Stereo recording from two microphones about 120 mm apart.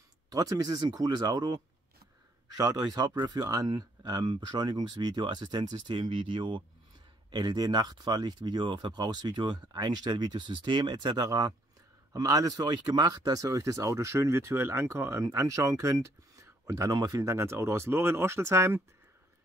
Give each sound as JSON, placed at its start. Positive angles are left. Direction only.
{"t": 0.3, "sound": "speech", "side_deg": -30}